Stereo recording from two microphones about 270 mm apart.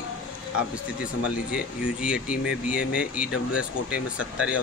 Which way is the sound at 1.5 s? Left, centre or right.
Centre.